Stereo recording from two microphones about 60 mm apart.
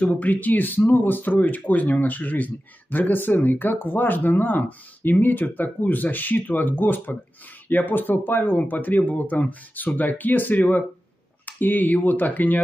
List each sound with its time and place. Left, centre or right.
0.0 s speech: left